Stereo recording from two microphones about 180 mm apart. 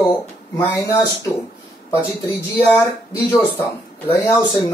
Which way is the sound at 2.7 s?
15° left (ahead or behind).